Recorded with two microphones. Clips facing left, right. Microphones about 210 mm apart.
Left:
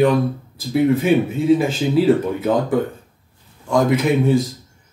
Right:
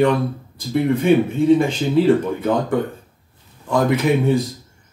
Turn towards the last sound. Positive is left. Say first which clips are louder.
# left 1 dB
turn(degrees=0)  # may be behind; listen again after turning